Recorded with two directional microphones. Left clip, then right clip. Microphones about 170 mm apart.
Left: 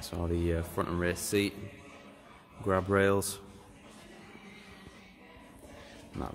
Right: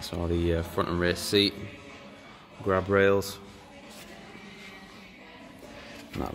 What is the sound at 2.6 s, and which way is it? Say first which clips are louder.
Speech: right 4 dB; 15° left (ahead or behind).